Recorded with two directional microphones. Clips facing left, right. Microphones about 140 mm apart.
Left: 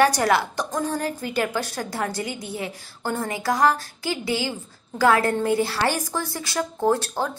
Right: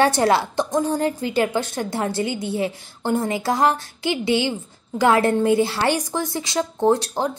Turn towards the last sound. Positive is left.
turn(degrees=-20)  # may be behind; listen again after turning